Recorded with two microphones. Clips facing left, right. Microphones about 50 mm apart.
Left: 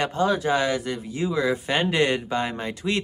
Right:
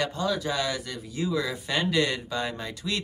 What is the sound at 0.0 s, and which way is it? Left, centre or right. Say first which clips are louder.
Speech: left 5 dB; left.